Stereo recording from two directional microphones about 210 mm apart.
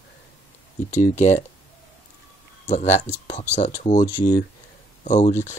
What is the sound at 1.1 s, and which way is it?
Speech, 35° left (ahead or behind).